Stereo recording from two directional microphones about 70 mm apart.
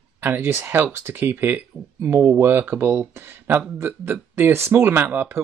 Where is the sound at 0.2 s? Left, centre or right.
Right.